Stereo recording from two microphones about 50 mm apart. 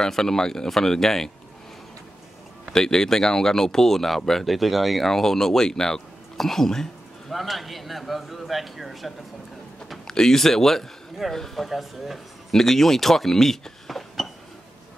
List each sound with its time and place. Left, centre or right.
0.0 s speech: centre
2.7 s speech: centre
10.0 s speech: centre